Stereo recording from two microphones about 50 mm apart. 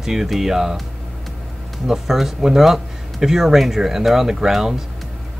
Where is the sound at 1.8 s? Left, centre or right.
Centre.